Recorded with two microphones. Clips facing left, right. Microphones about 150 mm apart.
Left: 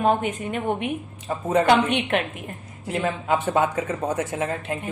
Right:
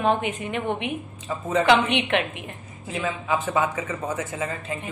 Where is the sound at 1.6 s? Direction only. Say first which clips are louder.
Right 1 dB; 45° left (ahead or behind).